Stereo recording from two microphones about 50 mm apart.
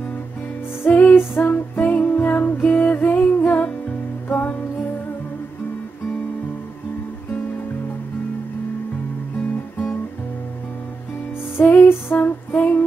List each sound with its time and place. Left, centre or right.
0.8 s music: left
11.6 s music: left
12.2 s music: left